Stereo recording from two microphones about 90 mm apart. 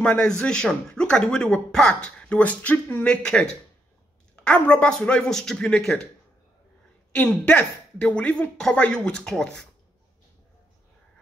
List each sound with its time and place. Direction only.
0.0 s speech: 10° left (ahead or behind)
4.5 s speech: 15° left (ahead or behind)
7.1 s speech: 15° left (ahead or behind)